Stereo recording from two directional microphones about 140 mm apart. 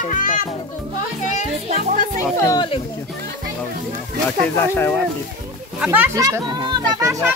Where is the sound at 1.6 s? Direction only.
55° right (ahead or behind).